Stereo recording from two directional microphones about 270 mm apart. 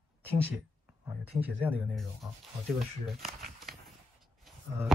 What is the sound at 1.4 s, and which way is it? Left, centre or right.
Speech, centre.